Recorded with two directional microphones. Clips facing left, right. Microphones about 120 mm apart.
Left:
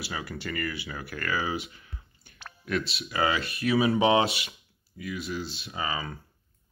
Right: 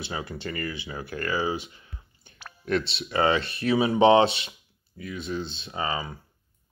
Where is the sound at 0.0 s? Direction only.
25° right (ahead or behind).